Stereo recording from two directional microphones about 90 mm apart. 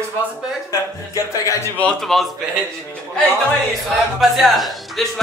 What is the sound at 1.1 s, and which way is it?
Speech, 35° left (ahead or behind).